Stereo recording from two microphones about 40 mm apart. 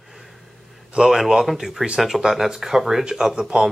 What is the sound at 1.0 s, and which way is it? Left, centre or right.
Speech, centre.